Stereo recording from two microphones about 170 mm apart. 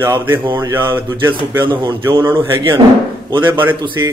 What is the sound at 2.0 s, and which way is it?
Speech, 15° right (ahead or behind).